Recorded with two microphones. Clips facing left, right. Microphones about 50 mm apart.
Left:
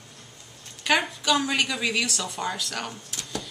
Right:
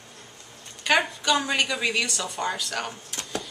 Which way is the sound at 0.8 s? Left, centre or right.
Centre.